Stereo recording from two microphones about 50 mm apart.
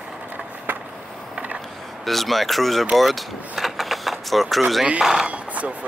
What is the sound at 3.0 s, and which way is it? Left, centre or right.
Vehicle, centre.